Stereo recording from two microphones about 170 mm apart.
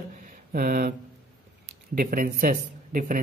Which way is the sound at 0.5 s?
60° right (ahead or behind).